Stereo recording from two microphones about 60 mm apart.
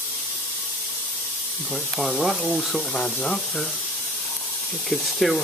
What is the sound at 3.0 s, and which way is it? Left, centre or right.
Speech, centre.